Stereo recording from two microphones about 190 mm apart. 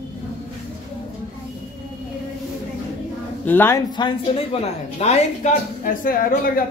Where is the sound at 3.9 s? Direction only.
25° left (ahead or behind).